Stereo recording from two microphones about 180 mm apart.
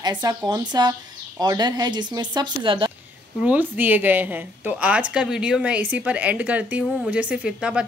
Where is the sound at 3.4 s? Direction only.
10° right (ahead or behind).